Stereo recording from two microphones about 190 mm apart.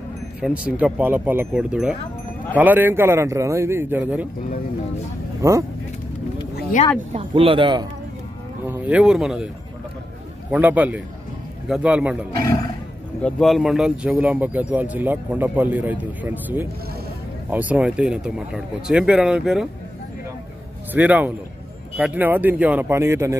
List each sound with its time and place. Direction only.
0.4 s speech: 5° right (ahead or behind)
5.4 s speech: 15° right (ahead or behind)
7.1 s speech: 30° right (ahead or behind)
8.6 s speech: 10° right (ahead or behind)
10.5 s speech: 10° right (ahead or behind)
13.2 s speech: centre (ahead or behind)
20.9 s speech: 10° right (ahead or behind)